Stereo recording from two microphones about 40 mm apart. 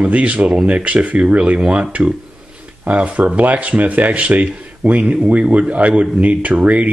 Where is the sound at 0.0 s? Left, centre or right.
Right.